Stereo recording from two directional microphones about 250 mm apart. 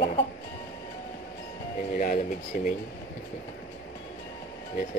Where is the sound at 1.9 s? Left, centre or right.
Left.